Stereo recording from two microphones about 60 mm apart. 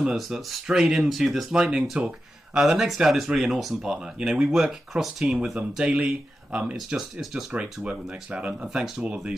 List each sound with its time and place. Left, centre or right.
0.0 s speech: centre
2.7 s speech: centre
7.8 s speech: right
8.6 s speech: centre
9.0 s speech: right